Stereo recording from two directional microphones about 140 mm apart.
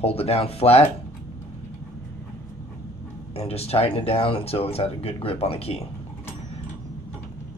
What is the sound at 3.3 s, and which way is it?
Speech, 45° left (ahead or behind).